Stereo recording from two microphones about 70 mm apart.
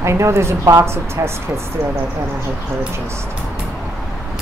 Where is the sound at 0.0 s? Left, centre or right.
Right.